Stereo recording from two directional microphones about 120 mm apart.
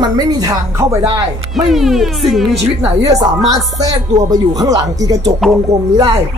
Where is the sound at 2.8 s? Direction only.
30° right (ahead or behind).